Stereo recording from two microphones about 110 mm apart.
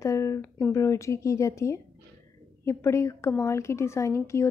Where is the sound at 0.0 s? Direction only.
25° left (ahead or behind).